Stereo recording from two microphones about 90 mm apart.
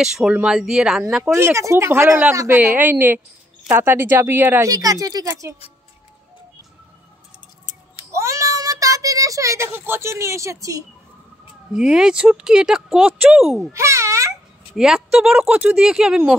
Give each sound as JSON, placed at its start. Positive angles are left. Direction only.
{"t": 0.0, "sound": "speech", "side_deg": -5}
{"t": 1.3, "sound": "speech", "side_deg": -30}
{"t": 4.6, "sound": "speech", "side_deg": -40}
{"t": 8.1, "sound": "child singing", "side_deg": -35}
{"t": 11.7, "sound": "speech", "side_deg": -5}
{"t": 13.7, "sound": "babbling", "side_deg": -30}
{"t": 14.8, "sound": "speech", "side_deg": -5}